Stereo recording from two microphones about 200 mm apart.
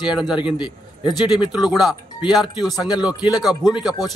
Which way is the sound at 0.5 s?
20° left (ahead or behind).